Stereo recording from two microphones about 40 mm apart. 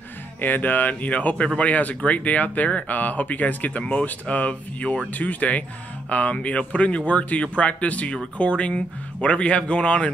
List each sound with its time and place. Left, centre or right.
0.4 s speech: left